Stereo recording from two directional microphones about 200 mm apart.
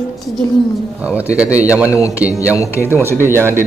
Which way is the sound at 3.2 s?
10° right (ahead or behind).